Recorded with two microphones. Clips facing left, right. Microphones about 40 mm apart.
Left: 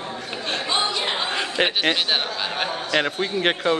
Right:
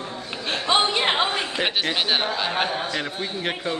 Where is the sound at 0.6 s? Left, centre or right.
Right.